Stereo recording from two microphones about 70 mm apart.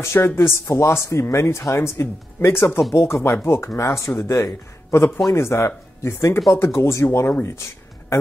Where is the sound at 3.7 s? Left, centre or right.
Left.